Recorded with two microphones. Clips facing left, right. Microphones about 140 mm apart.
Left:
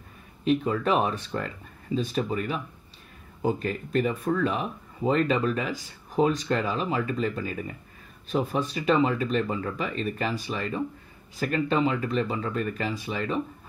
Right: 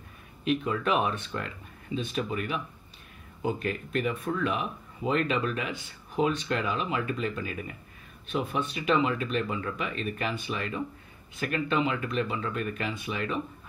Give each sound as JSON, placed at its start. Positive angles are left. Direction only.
{"t": 0.5, "sound": "speech", "side_deg": 35}